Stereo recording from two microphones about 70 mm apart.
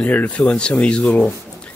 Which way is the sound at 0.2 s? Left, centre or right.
Centre.